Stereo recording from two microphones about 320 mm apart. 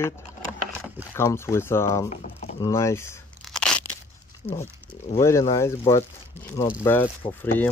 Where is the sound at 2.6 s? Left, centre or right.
Centre.